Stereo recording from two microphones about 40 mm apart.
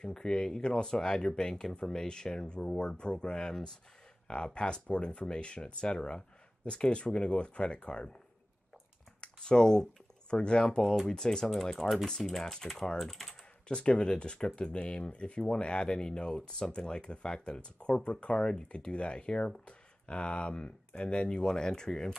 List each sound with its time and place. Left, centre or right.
0.0 s speech: centre
9.2 s speech: left; by 13.4 s centre
13.7 s speech: left